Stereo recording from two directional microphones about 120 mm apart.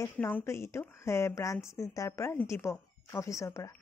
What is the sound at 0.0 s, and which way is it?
A woman's voice, 20° left (ahead or behind).